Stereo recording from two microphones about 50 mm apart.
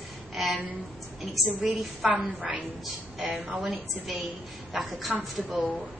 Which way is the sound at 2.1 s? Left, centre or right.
Centre.